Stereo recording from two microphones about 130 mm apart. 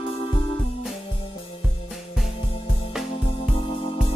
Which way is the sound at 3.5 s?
50° left (ahead or behind).